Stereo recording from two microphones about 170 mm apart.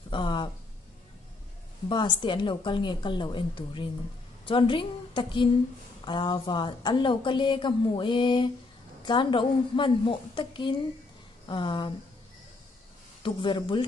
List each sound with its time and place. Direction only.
0.1 s speech: 30° left (ahead or behind)
1.9 s a woman's voice: 30° left (ahead or behind)
13.2 s a woman's voice: 30° left (ahead or behind)